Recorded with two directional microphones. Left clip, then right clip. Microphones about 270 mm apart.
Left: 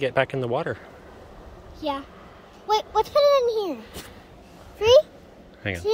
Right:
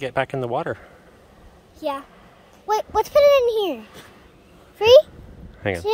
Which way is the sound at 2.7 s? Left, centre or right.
Right.